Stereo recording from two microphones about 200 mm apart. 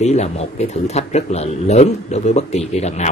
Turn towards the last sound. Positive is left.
turn(degrees=35)  # may be behind; listen again after turning